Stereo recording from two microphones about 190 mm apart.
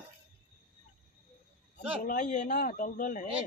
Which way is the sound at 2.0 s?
45° left (ahead or behind).